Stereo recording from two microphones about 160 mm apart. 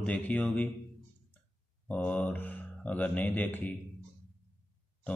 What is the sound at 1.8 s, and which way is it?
Speech, 10° left (ahead or behind).